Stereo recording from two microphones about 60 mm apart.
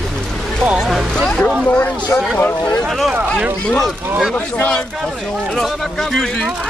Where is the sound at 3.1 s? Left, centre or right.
Right.